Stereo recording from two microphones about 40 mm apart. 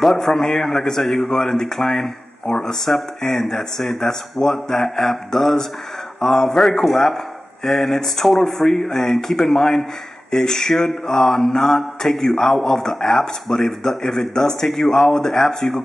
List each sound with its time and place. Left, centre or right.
0.0 s a man's voice: centre